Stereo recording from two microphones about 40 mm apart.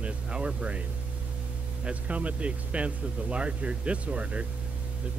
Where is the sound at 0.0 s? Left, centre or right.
Right.